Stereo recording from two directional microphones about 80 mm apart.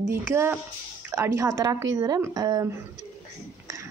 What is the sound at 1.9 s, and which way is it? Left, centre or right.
Speech, right.